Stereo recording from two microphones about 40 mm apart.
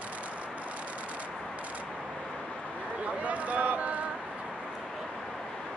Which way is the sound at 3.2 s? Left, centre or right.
Right.